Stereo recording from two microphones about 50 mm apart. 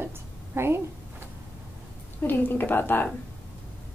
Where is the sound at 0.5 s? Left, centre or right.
Right.